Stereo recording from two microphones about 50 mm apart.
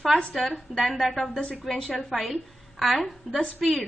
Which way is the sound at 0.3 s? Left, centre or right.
Centre.